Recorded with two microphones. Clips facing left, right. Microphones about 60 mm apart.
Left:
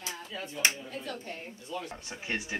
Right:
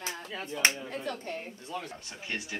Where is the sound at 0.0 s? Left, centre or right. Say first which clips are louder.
Right 1 dB; right.